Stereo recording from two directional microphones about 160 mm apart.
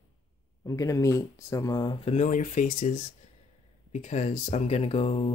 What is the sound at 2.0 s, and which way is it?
Speech, 50° left (ahead or behind).